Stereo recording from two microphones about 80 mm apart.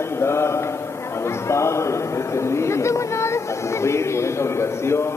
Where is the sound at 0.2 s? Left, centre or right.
Left.